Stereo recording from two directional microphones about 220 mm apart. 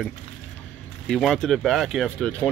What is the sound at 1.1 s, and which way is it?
Speech, centre (ahead or behind).